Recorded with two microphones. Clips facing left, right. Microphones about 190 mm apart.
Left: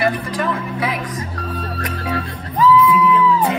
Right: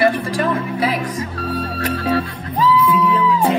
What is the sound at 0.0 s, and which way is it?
Music, 30° right (ahead or behind).